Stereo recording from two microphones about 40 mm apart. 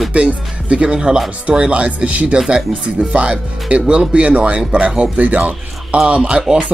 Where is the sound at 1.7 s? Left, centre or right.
Right.